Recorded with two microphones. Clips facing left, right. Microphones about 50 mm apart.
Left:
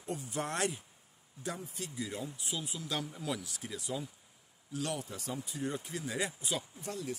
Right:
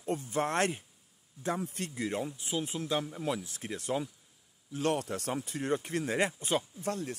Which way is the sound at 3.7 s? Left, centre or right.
Right.